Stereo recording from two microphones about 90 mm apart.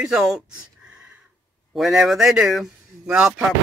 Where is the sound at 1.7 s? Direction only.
Centre (ahead or behind).